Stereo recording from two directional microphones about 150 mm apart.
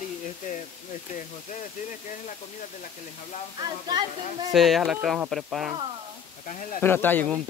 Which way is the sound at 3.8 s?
30° right (ahead or behind).